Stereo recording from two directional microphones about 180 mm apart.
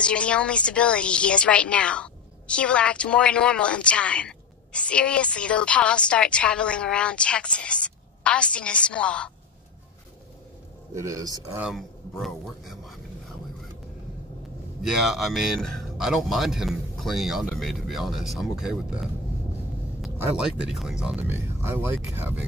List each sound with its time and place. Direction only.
0.0 s a woman's voice: 5° left (ahead or behind)
11.0 s speech: 20° right (ahead or behind)
11.6 s speech: centre (ahead or behind)
14.8 s a woman's voice: centre (ahead or behind)
20.2 s a woman's voice: 5° right (ahead or behind)